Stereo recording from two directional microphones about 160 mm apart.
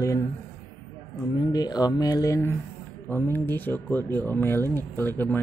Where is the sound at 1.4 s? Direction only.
25° left (ahead or behind).